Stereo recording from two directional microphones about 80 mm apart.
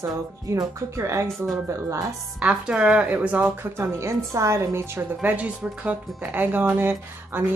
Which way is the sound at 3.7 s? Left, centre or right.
Right.